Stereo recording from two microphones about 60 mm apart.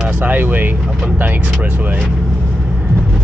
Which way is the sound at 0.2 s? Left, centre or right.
Right.